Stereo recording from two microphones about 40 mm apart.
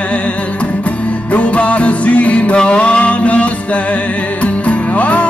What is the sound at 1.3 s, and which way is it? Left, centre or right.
Music, left.